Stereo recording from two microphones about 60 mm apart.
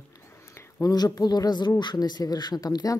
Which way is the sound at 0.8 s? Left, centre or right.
Left.